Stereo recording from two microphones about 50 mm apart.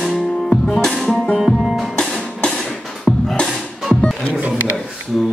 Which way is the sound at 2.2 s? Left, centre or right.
Centre.